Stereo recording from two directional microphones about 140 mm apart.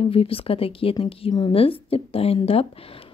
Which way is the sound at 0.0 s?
40° left (ahead or behind).